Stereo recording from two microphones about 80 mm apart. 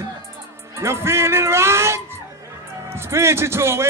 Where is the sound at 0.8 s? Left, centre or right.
Right.